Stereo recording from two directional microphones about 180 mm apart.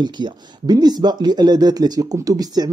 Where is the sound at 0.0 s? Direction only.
25° right (ahead or behind).